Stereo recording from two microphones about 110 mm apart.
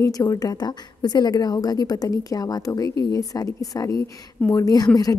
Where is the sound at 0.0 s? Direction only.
30° left (ahead or behind).